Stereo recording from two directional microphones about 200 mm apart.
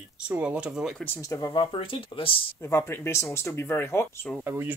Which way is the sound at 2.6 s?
15° left (ahead or behind).